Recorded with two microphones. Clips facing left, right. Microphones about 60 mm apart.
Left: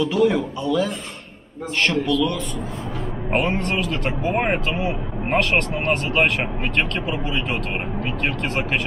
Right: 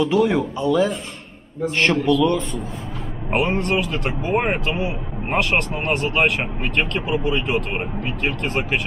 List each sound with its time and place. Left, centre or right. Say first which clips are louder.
0.0 s a man's voice: right 1 dB; centre
1.8 s a man's voice: right 2 dB; right
3.3 s speech: right 2 dB; centre